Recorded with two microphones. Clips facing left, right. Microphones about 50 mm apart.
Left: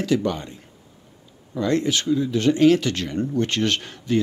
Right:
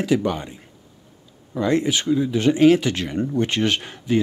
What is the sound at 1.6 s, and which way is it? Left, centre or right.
Speech, centre.